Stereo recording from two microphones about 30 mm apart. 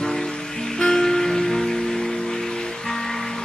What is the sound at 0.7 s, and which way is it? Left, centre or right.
Music, centre.